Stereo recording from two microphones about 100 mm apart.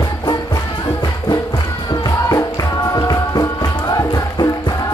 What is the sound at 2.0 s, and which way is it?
Music, 40° left (ahead or behind).